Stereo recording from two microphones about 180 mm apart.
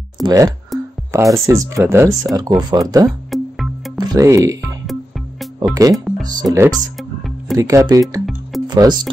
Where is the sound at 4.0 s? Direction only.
20° right (ahead or behind).